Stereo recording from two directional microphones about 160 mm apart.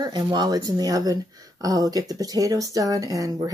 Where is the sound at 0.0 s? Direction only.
25° right (ahead or behind).